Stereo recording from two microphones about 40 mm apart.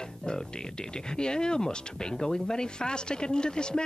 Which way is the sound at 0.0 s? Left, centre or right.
Centre.